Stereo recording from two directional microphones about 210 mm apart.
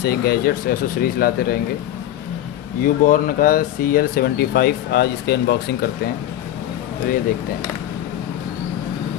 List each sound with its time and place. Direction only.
0.0 s speech: 50° left (ahead or behind)
2.8 s speech: 40° left (ahead or behind)